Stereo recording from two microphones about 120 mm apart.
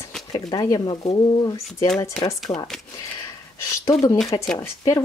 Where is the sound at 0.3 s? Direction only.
35° left (ahead or behind).